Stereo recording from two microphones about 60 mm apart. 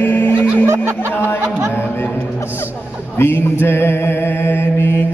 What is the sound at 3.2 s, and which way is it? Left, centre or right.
Mantra, left.